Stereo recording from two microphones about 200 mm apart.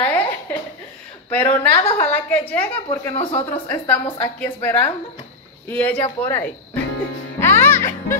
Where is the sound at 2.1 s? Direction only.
10° left (ahead or behind).